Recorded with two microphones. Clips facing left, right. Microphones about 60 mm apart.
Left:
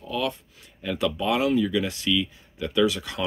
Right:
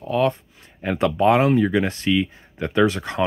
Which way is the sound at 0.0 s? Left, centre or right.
Right.